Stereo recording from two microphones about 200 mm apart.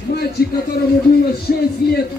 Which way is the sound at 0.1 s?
50° left (ahead or behind).